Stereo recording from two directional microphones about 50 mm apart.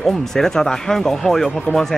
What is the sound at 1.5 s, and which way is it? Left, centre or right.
Speech, left.